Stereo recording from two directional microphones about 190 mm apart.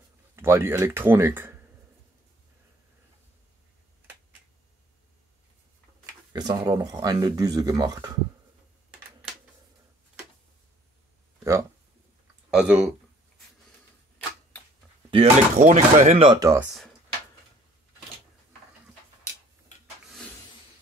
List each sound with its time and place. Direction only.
0.4 s speech: 15° right (ahead or behind)
6.3 s speech: 20° right (ahead or behind)
12.4 s speech: 5° right (ahead or behind)
15.0 s speech: 30° right (ahead or behind)
16.3 s speech: 20° right (ahead or behind)
16.5 s speech: centre (ahead or behind)